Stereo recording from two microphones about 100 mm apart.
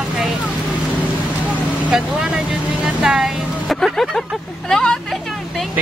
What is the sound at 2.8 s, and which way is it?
Vehicle, 5° right (ahead or behind).